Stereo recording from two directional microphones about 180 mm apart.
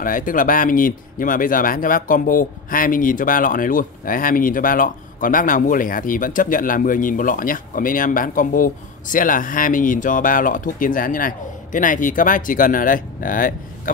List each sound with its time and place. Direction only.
0.0 s speech: 50° left (ahead or behind)